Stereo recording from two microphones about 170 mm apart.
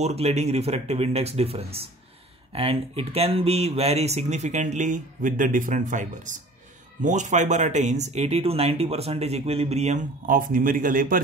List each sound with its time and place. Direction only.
0.0 s speech: 40° right (ahead or behind); by 11.1 s 55° right (ahead or behind)